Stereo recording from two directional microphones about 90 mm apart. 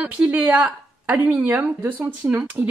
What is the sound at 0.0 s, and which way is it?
Speech, 10° right (ahead or behind).